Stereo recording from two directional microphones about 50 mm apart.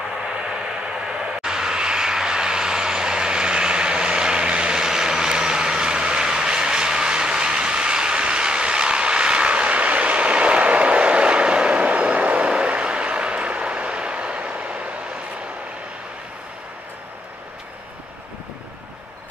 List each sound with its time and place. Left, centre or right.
1.0 s vehicle: centre